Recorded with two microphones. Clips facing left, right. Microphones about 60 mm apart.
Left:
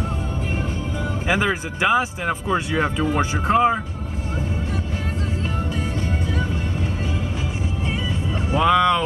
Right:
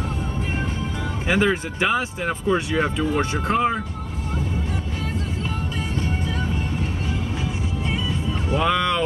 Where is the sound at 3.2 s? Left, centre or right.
Centre.